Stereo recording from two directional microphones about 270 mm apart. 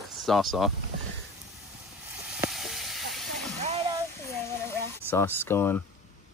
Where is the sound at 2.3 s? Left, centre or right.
Centre.